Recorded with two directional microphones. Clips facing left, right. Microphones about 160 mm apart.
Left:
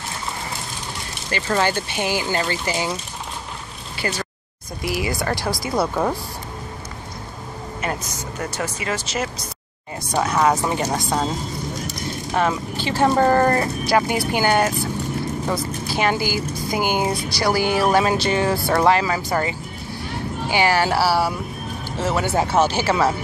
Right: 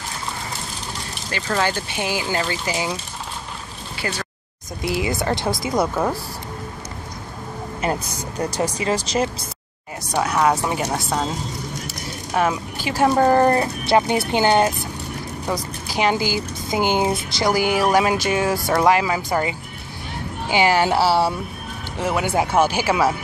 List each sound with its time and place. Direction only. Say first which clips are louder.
1.3 s speech: left 2 dB; 5° left (ahead or behind)
4.8 s speech: right 2 dB; 25° right (ahead or behind)
8.4 s speech: right 5 dB; 35° right (ahead or behind)
10.4 s speech: even; 5° right (ahead or behind)
12.4 s speech: right 1 dB; 10° right (ahead or behind)
13.8 s speech: right 2 dB; 25° right (ahead or behind)
21.9 s speech: even; 15° right (ahead or behind)